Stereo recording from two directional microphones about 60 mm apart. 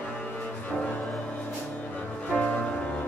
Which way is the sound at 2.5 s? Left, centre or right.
Centre.